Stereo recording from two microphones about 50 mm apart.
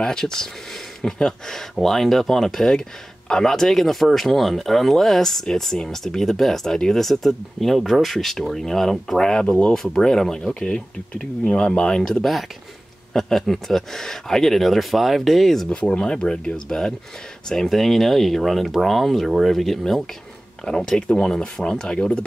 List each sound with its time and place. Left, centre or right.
0.0 s speech: centre
9.9 s speech: centre
15.7 s speech: centre